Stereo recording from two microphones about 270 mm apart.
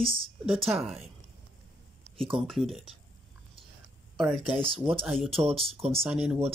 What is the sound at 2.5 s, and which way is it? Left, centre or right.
Speech, centre.